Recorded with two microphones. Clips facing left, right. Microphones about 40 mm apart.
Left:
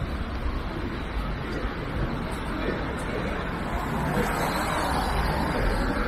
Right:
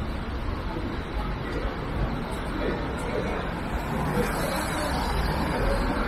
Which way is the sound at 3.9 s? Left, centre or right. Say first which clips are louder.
Even; left.